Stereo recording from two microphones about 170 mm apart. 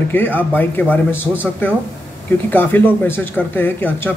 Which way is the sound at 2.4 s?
10° left (ahead or behind).